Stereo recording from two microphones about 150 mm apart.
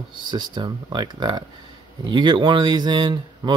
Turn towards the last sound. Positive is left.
turn(degrees=-30)  # may be behind; listen again after turning